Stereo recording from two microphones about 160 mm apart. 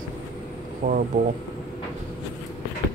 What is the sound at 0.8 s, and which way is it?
Speech, 75° right (ahead or behind).